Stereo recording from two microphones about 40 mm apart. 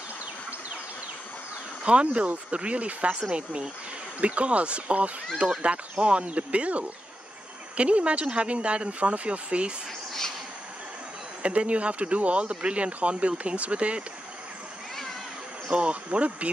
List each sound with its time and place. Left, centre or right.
1.9 s speech: right
11.4 s speech: right
15.7 s speech: right